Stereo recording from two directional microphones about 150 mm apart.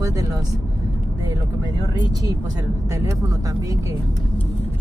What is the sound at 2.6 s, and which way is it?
Speech, 20° right (ahead or behind).